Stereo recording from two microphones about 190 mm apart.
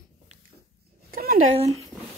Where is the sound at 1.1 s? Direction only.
50° right (ahead or behind).